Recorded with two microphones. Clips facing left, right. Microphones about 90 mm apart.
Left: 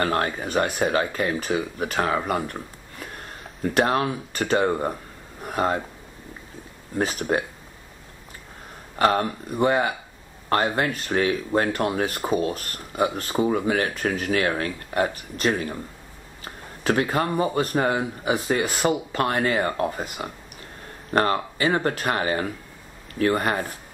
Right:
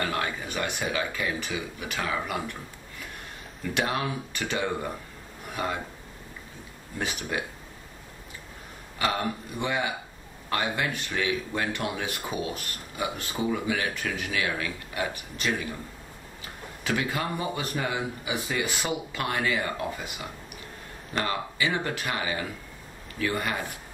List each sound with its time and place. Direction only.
0.0 s speech: 45° left (ahead or behind)
3.6 s speech: 45° left (ahead or behind)
7.0 s speech: 40° left (ahead or behind)
8.9 s speech: 45° left (ahead or behind)
16.8 s speech: 45° left (ahead or behind)